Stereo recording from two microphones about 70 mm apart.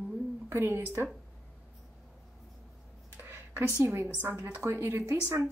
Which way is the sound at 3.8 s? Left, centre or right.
Right.